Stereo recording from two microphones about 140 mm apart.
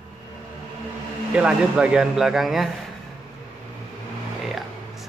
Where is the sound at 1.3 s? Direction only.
5° right (ahead or behind).